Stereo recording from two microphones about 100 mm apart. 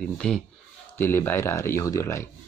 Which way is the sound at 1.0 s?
20° left (ahead or behind).